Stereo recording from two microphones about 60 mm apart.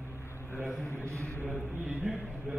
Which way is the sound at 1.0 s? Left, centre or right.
Right.